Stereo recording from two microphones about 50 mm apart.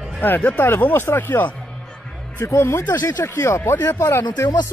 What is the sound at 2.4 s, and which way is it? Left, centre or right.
Speech, left.